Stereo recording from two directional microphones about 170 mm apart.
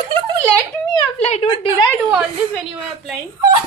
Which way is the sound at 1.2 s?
35° left (ahead or behind).